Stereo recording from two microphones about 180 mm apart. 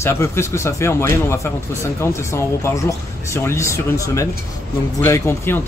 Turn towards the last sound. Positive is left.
turn(degrees=15)  # may be behind; listen again after turning